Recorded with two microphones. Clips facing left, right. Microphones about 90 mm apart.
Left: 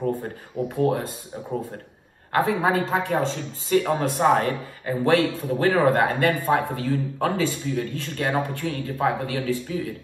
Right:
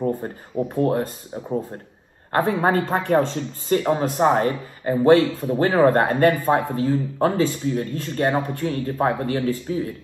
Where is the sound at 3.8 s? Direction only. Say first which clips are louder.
Right 4 dB; 25° right (ahead or behind).